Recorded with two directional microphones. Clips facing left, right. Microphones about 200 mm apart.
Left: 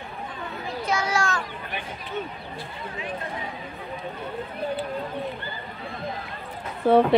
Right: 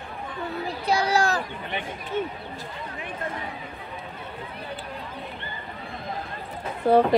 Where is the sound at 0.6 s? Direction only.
35° right (ahead or behind).